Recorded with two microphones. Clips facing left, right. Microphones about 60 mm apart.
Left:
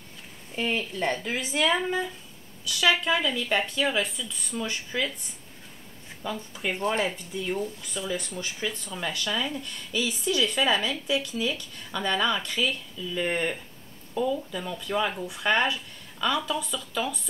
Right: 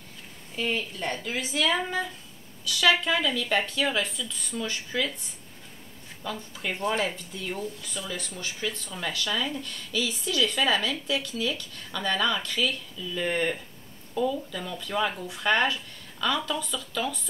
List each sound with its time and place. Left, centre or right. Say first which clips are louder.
0.6 s speech: left 2 dB; left
1.9 s speech: left 2 dB; centre
6.2 s speech: left 2 dB; left
9.6 s speech: even; left